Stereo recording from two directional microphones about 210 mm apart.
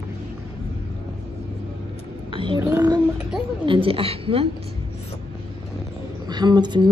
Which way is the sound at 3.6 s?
25° right (ahead or behind).